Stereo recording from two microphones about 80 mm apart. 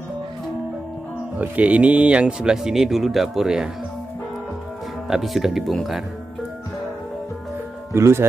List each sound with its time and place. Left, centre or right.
1.4 s speech: centre
5.1 s speech: centre
7.9 s speech: right